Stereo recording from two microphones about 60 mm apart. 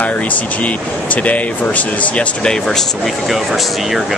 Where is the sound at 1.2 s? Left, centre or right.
Left.